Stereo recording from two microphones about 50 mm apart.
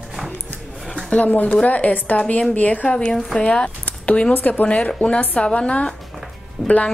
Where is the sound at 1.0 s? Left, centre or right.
Left.